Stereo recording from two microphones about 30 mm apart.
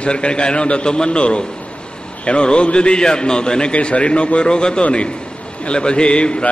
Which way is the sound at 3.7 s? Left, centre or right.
Left.